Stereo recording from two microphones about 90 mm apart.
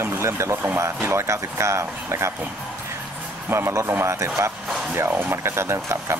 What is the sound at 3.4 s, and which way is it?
Speech, 30° right (ahead or behind).